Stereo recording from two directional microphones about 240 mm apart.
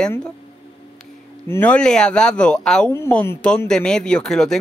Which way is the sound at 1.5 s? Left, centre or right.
Centre.